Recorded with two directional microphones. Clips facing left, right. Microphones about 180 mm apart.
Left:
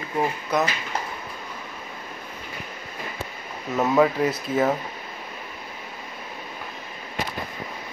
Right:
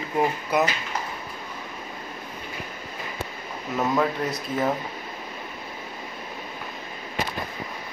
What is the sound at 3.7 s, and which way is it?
Speech, 5° left (ahead or behind).